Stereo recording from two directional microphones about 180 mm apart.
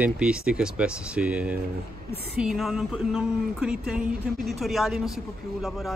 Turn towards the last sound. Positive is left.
turn(degrees=0)  # may be behind; listen again after turning